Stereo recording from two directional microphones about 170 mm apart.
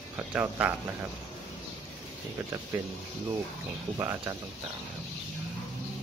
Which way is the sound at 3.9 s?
20° right (ahead or behind).